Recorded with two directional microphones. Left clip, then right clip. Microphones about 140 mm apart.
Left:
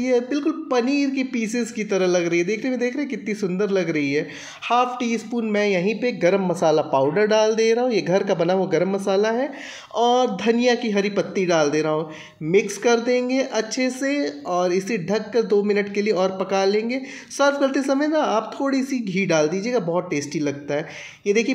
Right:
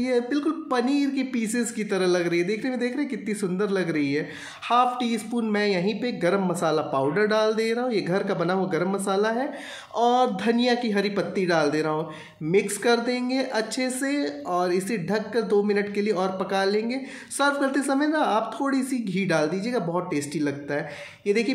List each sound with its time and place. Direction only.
0.0 s speech: 20° left (ahead or behind)
2.3 s speech: 35° right (ahead or behind)
2.6 s speech: 20° left (ahead or behind)
4.7 s speech: 20° left (ahead or behind)